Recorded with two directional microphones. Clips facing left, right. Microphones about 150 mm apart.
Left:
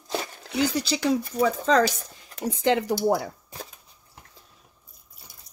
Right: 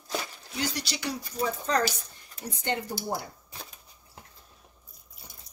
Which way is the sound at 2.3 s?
90° left.